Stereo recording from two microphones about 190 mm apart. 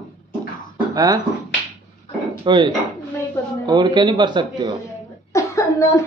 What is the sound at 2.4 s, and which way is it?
Speech, 25° right (ahead or behind).